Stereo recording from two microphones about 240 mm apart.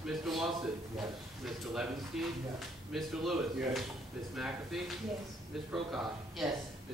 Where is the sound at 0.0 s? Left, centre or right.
Centre.